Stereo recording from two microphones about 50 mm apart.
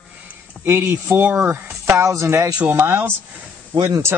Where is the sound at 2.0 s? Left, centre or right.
Right.